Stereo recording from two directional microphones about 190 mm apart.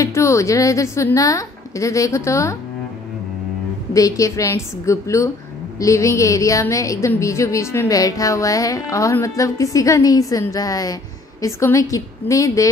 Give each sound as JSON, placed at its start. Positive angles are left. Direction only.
{"t": 0.0, "sound": "a woman's voice", "side_deg": 15}
{"t": 3.9, "sound": "a woman's voice", "side_deg": 15}